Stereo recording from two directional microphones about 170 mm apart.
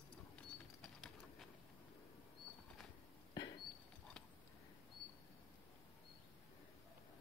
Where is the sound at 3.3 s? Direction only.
25° left (ahead or behind).